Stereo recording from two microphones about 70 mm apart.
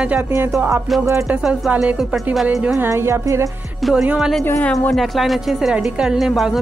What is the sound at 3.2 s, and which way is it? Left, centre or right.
Music, right.